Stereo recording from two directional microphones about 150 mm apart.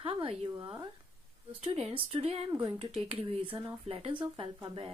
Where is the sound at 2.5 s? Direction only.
30° right (ahead or behind).